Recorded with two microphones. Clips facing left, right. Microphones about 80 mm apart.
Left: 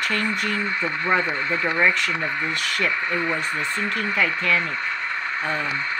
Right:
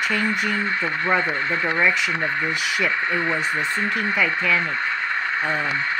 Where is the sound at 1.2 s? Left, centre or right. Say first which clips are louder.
Right 1 dB; right.